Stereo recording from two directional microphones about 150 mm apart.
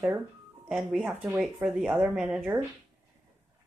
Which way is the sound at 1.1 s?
15° right (ahead or behind).